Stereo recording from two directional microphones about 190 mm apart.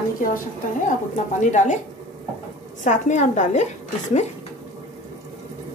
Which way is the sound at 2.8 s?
40° left (ahead or behind).